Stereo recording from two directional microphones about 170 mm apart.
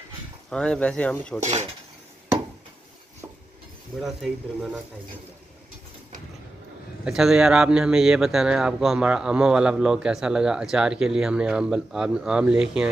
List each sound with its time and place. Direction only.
0.5 s a man's voice: 5° left (ahead or behind)
1.4 s cutlery: 40° right (ahead or behind)
4.0 s a man's voice: 5° right (ahead or behind)
7.1 s a man's voice: 5° right (ahead or behind)